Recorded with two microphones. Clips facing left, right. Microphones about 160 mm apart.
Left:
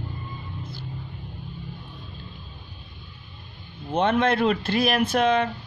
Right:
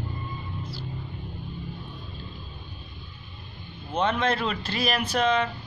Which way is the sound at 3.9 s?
55° left (ahead or behind).